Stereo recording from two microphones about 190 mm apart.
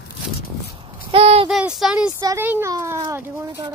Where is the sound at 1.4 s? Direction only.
Centre (ahead or behind).